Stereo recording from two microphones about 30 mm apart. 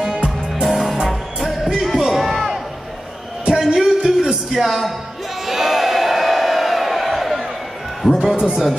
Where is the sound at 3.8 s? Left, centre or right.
Centre.